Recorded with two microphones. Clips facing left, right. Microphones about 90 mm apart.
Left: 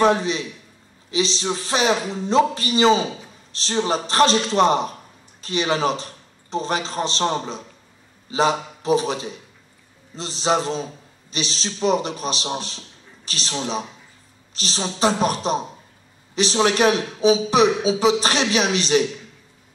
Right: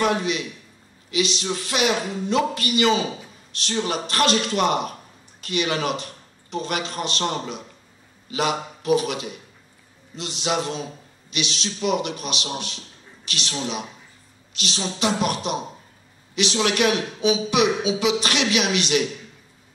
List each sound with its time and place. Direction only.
0.0 s a man's voice: 30° left (ahead or behind)